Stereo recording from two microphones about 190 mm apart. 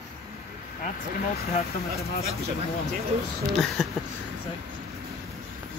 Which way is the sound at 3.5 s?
Centre (ahead or behind).